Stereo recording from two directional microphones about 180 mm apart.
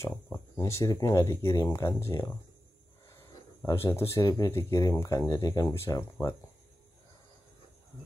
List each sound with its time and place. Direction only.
0.0 s speech: 15° left (ahead or behind)
3.6 s speech: 15° left (ahead or behind)